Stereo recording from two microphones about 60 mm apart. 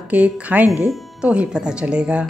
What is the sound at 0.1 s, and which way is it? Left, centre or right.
A woman's voice, right.